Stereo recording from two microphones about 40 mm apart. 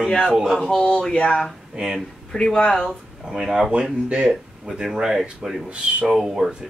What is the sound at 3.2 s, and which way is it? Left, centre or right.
Speech, centre.